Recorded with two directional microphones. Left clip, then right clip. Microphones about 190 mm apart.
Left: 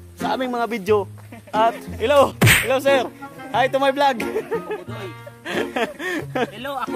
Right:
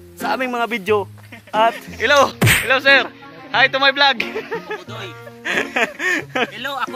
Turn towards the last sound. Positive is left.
turn(degrees=10)  # may be behind; listen again after turning